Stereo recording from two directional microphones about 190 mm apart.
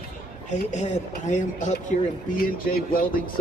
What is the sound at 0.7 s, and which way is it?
Speech, 40° left (ahead or behind).